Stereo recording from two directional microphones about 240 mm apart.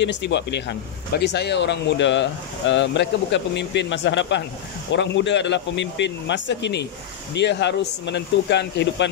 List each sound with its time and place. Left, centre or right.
0.0 s a man's voice: left